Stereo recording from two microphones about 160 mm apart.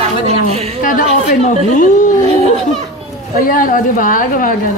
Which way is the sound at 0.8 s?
55° left (ahead or behind).